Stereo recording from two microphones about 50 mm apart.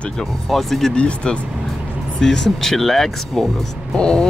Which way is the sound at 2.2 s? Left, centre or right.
Centre.